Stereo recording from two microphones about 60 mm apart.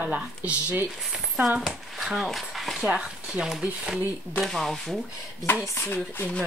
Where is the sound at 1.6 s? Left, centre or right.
Centre.